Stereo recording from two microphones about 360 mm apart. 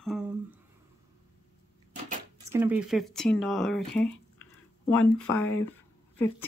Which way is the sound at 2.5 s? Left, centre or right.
Centre.